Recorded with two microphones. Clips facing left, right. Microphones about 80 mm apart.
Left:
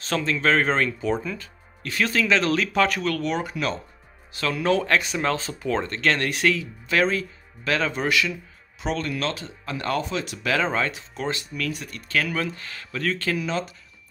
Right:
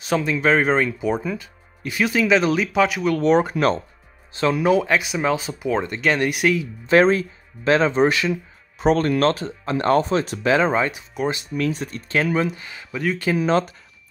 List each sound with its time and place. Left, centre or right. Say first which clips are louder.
0.0 s speech: right 3 dB; centre
3.2 s speech: right 9 dB; right
4.3 s speech: right 5 dB; right
6.9 s speech: right 7 dB; right
10.4 s speech: right 4 dB; right
11.5 s speech: right 7 dB; right; by 13.4 s centre
13.4 s speech: right 8 dB; right